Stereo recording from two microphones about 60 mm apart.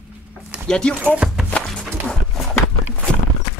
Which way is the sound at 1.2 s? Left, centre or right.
Centre.